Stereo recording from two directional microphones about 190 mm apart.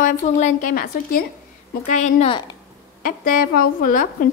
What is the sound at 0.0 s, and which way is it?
Speech, 45° left (ahead or behind).